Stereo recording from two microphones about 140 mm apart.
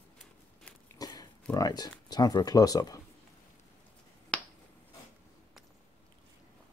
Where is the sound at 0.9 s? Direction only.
25° left (ahead or behind).